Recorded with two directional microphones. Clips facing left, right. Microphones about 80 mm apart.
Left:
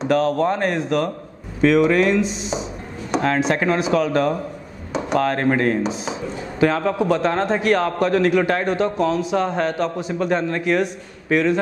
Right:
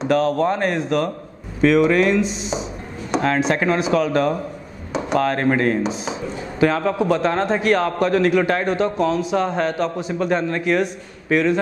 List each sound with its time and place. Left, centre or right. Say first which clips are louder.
0.0 s a man's voice: even; centre